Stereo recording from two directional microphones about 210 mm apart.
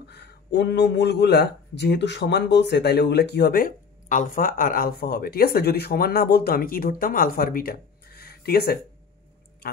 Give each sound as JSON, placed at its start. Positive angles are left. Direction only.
{"t": 0.1, "sound": "speech", "side_deg": 50}